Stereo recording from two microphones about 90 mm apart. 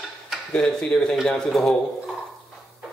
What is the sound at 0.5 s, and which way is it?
Speech, 10° left (ahead or behind).